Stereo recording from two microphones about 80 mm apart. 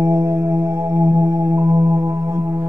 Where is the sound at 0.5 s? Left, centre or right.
Right.